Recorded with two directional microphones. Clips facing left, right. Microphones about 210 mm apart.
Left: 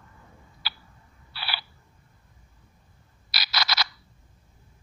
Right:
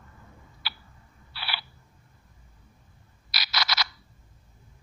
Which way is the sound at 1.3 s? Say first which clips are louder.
Left 1 dB; 35° left (ahead or behind).